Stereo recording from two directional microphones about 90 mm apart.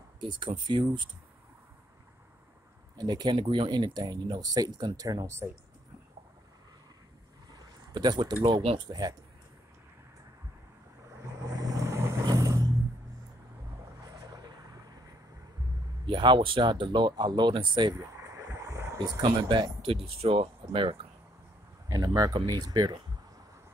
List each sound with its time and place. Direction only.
0.2 s speech: 60° right (ahead or behind)
3.0 s speech: 50° right (ahead or behind)
3.3 s speech: 65° right (ahead or behind); by 5.5 s 35° right (ahead or behind)
7.5 s speech: 50° right (ahead or behind)
11.2 s vehicle: 40° right (ahead or behind)
12.3 s vehicle: 45° right (ahead or behind)
16.1 s speech: 60° right (ahead or behind)
17.9 s a sound: 35° right (ahead or behind)
19.2 s speech: 60° right (ahead or behind)
19.8 s speech: 90° right
21.8 s speech: 45° right (ahead or behind)